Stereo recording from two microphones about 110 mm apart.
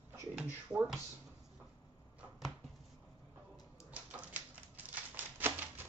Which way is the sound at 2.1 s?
Centre (ahead or behind).